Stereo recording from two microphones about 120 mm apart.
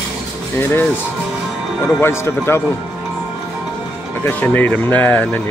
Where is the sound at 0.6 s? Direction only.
15° left (ahead or behind).